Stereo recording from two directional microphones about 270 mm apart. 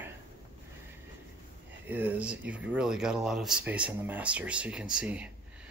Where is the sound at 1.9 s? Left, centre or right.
Centre.